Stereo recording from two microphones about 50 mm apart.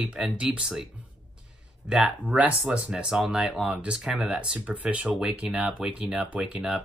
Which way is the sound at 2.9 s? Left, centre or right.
Centre.